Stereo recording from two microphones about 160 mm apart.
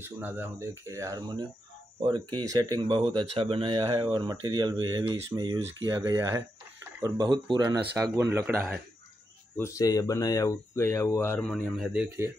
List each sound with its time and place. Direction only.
0.0 s speech: 10° right (ahead or behind); by 7.9 s 30° right (ahead or behind)
7.9 s speech: 15° right (ahead or behind)
9.6 s speech: 20° left (ahead or behind)
11.8 s speech: 5° right (ahead or behind)